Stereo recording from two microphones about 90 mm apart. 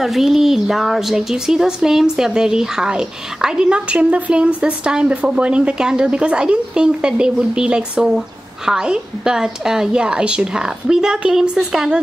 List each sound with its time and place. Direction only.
0.0 s a woman's voice: centre (ahead or behind)